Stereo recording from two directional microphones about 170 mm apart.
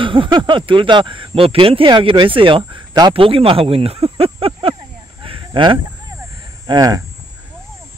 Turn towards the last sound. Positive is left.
turn(degrees=-20)  # may be behind; listen again after turning